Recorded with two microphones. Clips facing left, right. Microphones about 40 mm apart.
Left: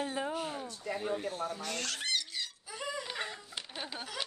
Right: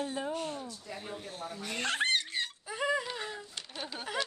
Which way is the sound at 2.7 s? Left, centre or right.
Right.